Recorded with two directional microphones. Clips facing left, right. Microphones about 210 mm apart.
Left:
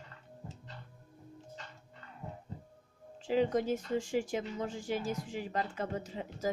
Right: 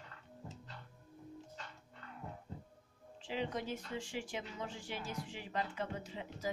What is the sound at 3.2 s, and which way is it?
Speech, 45° left (ahead or behind).